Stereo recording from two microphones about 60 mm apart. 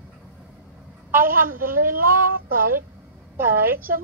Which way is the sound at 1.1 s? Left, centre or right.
Right.